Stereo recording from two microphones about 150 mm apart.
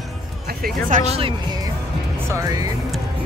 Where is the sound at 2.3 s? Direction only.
20° right (ahead or behind).